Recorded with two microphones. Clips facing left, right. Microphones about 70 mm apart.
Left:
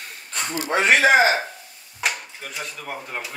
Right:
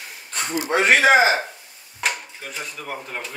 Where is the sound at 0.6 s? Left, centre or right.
Centre.